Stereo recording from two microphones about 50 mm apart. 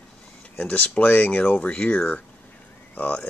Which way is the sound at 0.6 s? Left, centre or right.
Left.